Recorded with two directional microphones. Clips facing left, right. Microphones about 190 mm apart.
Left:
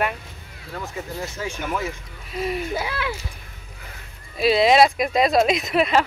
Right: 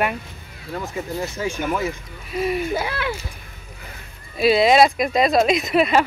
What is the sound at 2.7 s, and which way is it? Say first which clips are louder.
Speech: right 2 dB; 55° right (ahead or behind).